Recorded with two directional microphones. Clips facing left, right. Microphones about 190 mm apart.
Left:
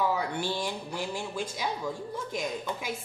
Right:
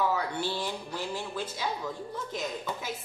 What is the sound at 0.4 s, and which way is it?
Speech, 10° left (ahead or behind).